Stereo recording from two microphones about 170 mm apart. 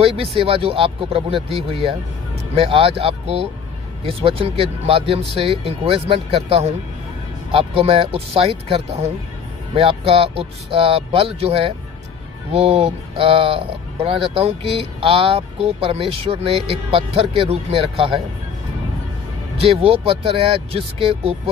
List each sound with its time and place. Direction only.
0.0 s speech: 35° right (ahead or behind)
19.6 s speech: 35° right (ahead or behind)